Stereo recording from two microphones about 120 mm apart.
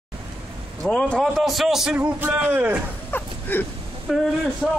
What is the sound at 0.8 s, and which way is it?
A man's voice, 10° left (ahead or behind).